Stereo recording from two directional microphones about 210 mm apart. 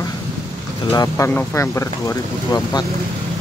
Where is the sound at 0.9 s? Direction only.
15° left (ahead or behind).